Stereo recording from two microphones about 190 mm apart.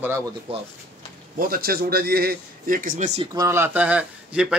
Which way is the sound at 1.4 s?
50° right (ahead or behind).